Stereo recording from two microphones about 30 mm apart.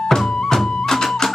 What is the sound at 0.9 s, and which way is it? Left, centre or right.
Music, centre.